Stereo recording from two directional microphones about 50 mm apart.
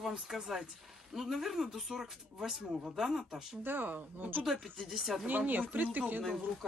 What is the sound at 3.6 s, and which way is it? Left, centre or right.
Speech, right.